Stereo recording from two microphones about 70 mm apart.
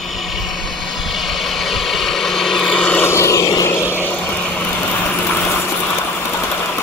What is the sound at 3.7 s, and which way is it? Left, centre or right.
Vehicle, left.